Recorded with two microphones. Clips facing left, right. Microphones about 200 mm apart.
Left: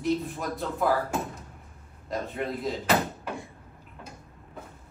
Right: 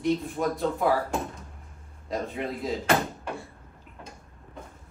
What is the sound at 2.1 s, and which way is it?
Speech, centre (ahead or behind).